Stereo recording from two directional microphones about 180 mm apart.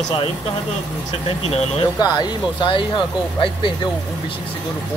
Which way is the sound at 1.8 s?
25° left (ahead or behind).